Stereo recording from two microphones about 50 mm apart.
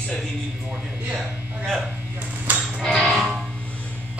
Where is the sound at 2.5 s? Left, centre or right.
Right.